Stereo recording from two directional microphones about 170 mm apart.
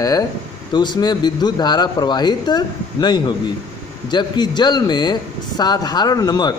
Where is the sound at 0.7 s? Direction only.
25° left (ahead or behind).